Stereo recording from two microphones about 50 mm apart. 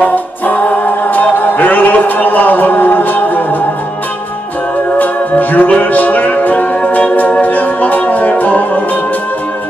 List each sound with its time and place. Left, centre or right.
0.0 s music: left
0.7 s chant: left
4.9 s music: left